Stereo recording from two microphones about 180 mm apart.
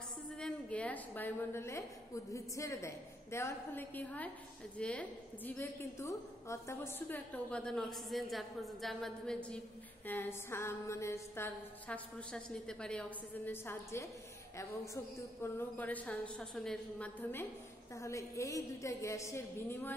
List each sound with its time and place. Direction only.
0.4 s a woman's voice: 5° left (ahead or behind)
15.4 s a woman's voice: 10° left (ahead or behind)